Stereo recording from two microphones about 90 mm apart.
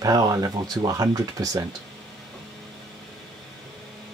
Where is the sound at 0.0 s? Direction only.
45° right (ahead or behind).